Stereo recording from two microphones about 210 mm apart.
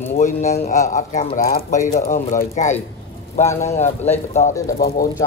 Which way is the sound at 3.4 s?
15° left (ahead or behind).